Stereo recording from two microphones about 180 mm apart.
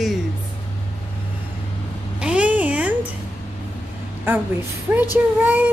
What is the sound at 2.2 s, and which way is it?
Babbling, 5° right (ahead or behind).